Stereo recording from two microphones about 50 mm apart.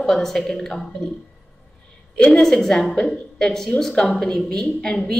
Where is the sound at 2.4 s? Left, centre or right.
Centre.